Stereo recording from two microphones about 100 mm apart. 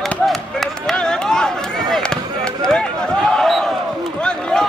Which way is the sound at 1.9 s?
5° left (ahead or behind).